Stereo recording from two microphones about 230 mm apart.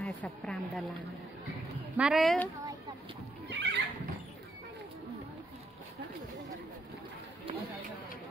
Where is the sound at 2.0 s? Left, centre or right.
Centre.